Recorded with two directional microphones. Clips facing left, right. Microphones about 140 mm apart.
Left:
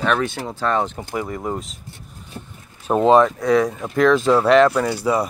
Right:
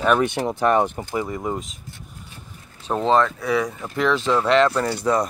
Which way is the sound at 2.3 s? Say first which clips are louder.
Left 8 dB; 45° left (ahead or behind).